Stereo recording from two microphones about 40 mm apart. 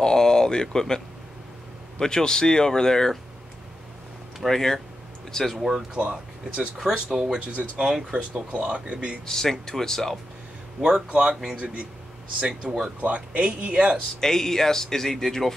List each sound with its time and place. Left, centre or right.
0.0 s speech: centre
4.5 s speech: centre
5.6 s speech: centre
5.9 s speech: right
6.8 s speech: centre
7.4 s speech: right
9.2 s speech: centre
10.8 s speech: centre
11.6 s speech: right
12.4 s speech: right
14.2 s speech: centre